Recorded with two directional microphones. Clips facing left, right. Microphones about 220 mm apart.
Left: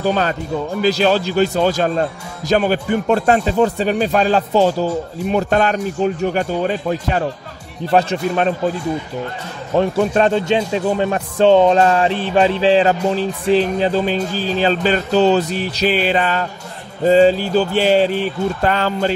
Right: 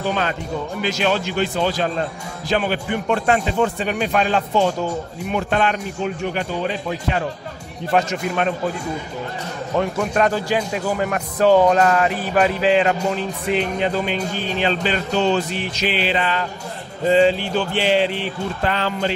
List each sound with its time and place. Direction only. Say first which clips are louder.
0.0 s speech: left 4 dB; 40° left (ahead or behind)
7.9 s speech: left 4 dB; 35° left (ahead or behind)
9.8 s speech: left 5 dB; 30° left (ahead or behind)